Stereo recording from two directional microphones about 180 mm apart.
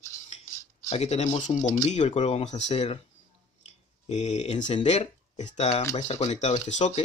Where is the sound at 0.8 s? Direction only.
40° left (ahead or behind).